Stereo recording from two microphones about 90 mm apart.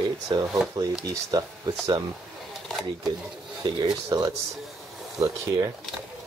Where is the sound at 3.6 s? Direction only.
50° right (ahead or behind).